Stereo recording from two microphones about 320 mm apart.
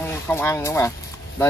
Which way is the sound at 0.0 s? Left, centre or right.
Centre.